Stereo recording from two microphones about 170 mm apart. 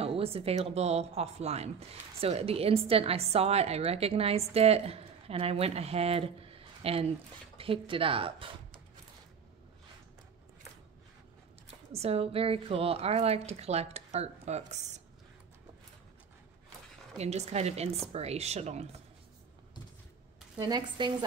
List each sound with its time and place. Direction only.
0.0 s a woman's voice: 35° right (ahead or behind)
11.9 s a woman's voice: 35° right (ahead or behind)
17.2 s a woman's voice: 40° right (ahead or behind)
20.5 s speech: 25° right (ahead or behind)